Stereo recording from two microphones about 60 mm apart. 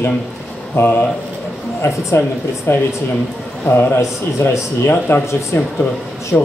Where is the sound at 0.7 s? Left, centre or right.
Left.